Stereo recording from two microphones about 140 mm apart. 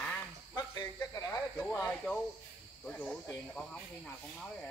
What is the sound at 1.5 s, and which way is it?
Snake, 5° left (ahead or behind).